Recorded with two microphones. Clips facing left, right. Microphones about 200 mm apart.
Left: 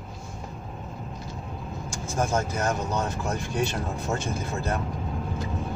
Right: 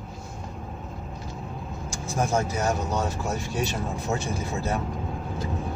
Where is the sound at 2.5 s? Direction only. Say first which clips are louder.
Right 1 dB; 10° right (ahead or behind).